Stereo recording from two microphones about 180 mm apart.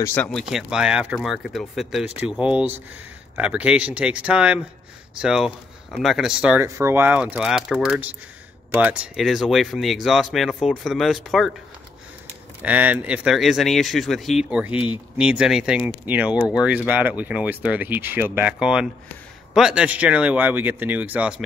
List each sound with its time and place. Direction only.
0.0 s speech: 10° left (ahead or behind)
12.6 s speech: 10° right (ahead or behind)